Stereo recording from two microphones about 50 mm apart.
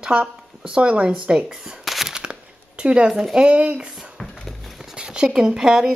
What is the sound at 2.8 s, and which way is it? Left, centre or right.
Speech, right.